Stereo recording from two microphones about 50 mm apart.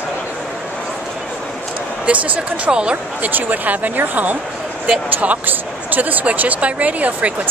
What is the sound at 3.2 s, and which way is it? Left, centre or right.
Speech, right.